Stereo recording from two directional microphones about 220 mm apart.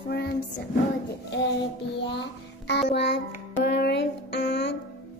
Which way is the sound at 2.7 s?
50° left (ahead or behind).